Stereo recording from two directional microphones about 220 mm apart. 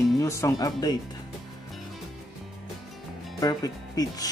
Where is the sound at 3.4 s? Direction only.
15° left (ahead or behind).